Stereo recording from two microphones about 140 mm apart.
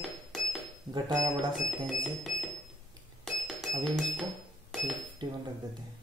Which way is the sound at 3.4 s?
5° left (ahead or behind).